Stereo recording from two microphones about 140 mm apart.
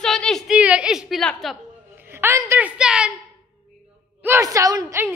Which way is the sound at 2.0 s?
15° right (ahead or behind).